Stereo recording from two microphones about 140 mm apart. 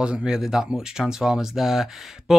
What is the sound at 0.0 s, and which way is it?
Speech, 5° right (ahead or behind).